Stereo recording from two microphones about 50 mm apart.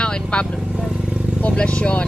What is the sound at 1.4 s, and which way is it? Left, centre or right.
Speech, left.